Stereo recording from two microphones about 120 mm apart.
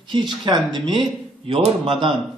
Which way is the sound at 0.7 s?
40° right (ahead or behind).